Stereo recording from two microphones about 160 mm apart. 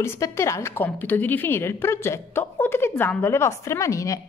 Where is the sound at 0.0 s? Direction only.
15° left (ahead or behind).